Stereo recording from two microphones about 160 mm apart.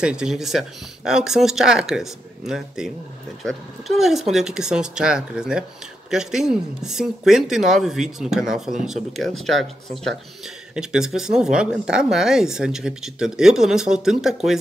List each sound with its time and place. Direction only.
0.0 s speech: 5° right (ahead or behind)